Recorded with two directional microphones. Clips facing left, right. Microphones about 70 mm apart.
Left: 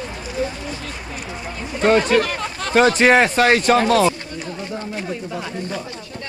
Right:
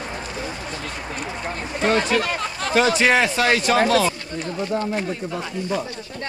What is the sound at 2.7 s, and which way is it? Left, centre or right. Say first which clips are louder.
Speech: left 4 dB; left.